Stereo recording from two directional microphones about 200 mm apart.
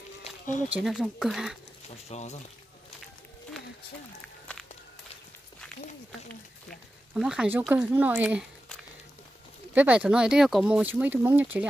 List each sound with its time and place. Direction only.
0.2 s a sound: 40° left (ahead or behind)
0.7 s speech: centre (ahead or behind)
1.9 s speech: 35° left (ahead or behind)
7.2 s speech: 5° right (ahead or behind)
9.8 s speech: 5° right (ahead or behind)